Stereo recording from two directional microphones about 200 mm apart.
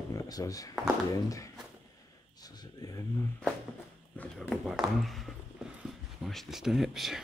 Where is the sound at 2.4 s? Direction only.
20° left (ahead or behind).